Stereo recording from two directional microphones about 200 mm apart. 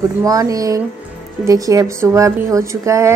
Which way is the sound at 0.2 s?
15° right (ahead or behind).